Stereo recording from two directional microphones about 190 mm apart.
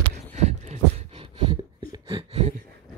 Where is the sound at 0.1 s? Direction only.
35° right (ahead or behind).